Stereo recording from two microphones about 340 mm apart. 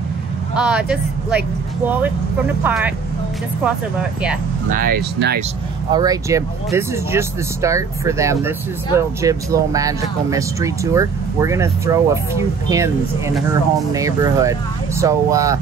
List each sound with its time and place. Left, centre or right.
0.6 s speech: centre
4.6 s speech: right
5.9 s speech: centre